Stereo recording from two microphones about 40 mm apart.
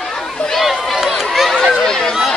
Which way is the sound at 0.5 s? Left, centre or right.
Centre.